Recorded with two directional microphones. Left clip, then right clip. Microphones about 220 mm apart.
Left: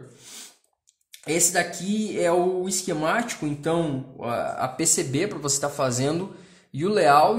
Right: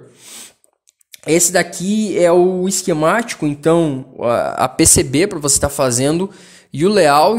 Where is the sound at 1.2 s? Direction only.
45° right (ahead or behind).